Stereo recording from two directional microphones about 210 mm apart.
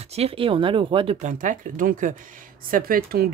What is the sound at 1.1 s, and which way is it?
Speech, 35° right (ahead or behind).